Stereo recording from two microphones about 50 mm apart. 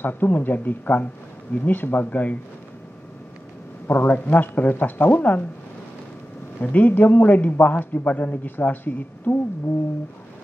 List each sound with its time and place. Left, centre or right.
0.0 s a man's voice: left
3.8 s a man's voice: left
4.1 s a man's voice: left
6.6 s a man's voice: left